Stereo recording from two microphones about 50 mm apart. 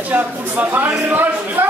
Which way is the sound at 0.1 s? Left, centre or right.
Right.